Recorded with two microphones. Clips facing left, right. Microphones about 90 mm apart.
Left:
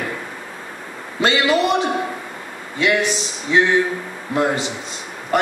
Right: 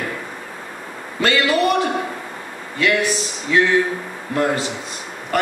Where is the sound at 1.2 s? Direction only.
20° left (ahead or behind).